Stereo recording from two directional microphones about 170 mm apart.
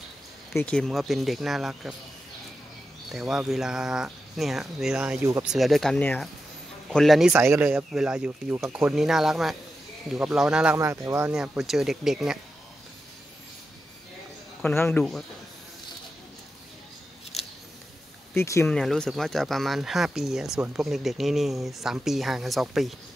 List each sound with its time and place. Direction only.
0.6 s speech: 5° left (ahead or behind)
3.1 s speech: 5° right (ahead or behind)
5.2 s speech: 15° right (ahead or behind)
5.5 s speech: centre (ahead or behind)
10.8 s speech: 15° right (ahead or behind)
11.3 s speech: 5° right (ahead or behind)
14.6 s speech: 10° left (ahead or behind)
18.3 s speech: 15° left (ahead or behind)
18.8 s speech: centre (ahead or behind)